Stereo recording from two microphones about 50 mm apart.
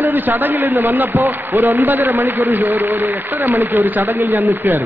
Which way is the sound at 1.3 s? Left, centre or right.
Right.